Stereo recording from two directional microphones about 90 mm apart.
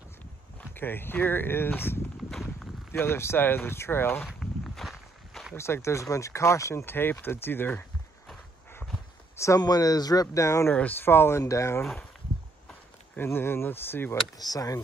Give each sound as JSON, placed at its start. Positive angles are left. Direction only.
{"t": 0.6, "sound": "speech", "side_deg": 20}
{"t": 2.3, "sound": "walk", "side_deg": 0}
{"t": 2.9, "sound": "speech", "side_deg": 25}
{"t": 4.4, "sound": "walk", "side_deg": 0}
{"t": 5.6, "sound": "speech", "side_deg": 30}
{"t": 9.6, "sound": "speech", "side_deg": 45}
{"t": 10.2, "sound": "speech", "side_deg": 35}
{"t": 10.7, "sound": "speech", "side_deg": 20}
{"t": 13.1, "sound": "speech", "side_deg": 25}
{"t": 14.4, "sound": "speech", "side_deg": 40}